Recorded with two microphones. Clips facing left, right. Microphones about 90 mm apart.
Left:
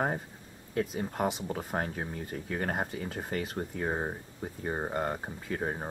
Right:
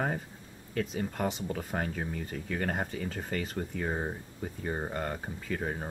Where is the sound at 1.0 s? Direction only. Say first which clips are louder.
Left 1 dB; 15° left (ahead or behind).